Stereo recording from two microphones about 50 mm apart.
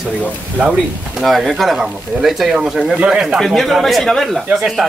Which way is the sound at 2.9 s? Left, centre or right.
Right.